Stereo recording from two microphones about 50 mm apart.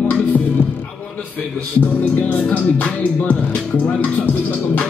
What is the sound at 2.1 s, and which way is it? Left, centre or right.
Music, left.